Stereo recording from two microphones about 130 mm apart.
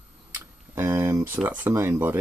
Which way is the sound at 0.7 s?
20° right (ahead or behind).